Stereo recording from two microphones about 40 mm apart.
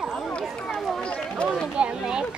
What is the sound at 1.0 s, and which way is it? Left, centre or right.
Run, left.